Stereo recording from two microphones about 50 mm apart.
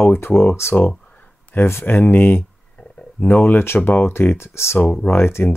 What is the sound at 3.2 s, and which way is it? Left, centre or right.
Speech, left.